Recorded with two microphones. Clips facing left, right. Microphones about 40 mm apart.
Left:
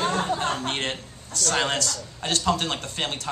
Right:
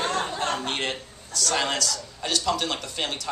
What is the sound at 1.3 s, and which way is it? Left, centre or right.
A man's voice, left.